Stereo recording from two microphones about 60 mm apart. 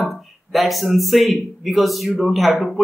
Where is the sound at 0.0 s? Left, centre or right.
Centre.